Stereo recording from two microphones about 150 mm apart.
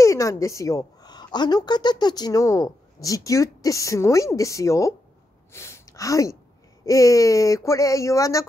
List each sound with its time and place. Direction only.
0.0 s a woman's voice: 20° left (ahead or behind)